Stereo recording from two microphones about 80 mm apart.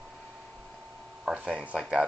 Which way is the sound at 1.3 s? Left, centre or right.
Centre.